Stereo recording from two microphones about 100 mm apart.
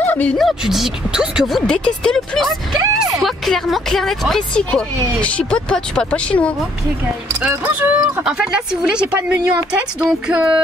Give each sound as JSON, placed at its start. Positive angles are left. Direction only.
{"t": 0.0, "sound": "a sound", "side_deg": 20}
{"t": 0.4, "sound": "speech", "side_deg": 0}
{"t": 1.7, "sound": "speech", "side_deg": 5}
{"t": 4.6, "sound": "speech", "side_deg": 10}
{"t": 7.4, "sound": "speech", "side_deg": -15}